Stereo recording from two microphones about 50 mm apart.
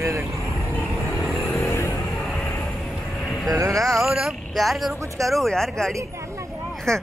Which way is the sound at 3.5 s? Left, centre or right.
Right.